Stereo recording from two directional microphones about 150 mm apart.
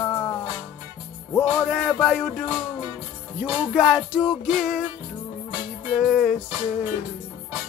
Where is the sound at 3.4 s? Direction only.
15° right (ahead or behind).